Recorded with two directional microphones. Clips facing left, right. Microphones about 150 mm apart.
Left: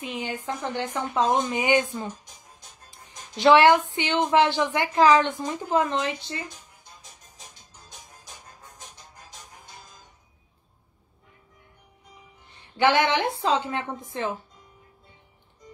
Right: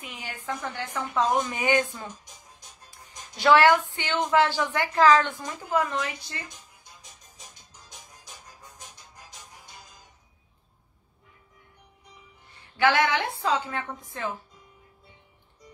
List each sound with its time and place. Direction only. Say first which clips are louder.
0.2 s speech: left 1 dB; 20° left (ahead or behind)
12.7 s speech: left 2 dB; 20° left (ahead or behind)